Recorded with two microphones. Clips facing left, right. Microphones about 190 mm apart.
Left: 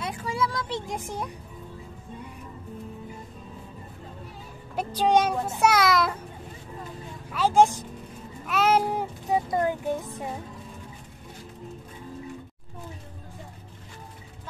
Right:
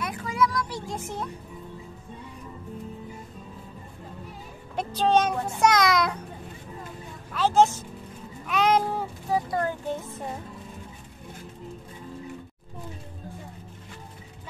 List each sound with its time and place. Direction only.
0.0 s music: 25° left (ahead or behind)
4.7 s a child's voice: 10° left (ahead or behind)
7.3 s a child's voice: 10° left (ahead or behind)